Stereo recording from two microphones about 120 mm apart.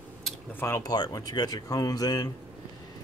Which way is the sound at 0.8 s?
35° left (ahead or behind).